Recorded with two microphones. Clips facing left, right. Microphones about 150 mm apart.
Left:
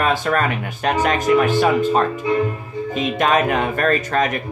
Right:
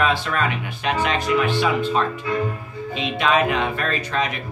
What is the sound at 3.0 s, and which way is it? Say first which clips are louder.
Speech: left 2 dB; 45° left (ahead or behind).